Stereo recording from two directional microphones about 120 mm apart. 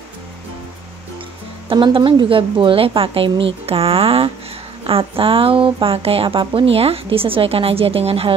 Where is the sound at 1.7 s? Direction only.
45° right (ahead or behind).